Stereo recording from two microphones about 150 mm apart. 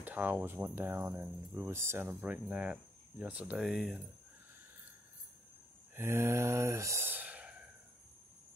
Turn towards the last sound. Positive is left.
turn(degrees=-10)  # may be behind; listen again after turning